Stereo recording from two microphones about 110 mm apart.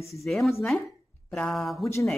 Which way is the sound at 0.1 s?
Centre (ahead or behind).